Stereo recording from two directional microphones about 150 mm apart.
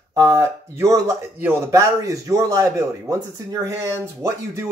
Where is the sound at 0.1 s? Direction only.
20° right (ahead or behind).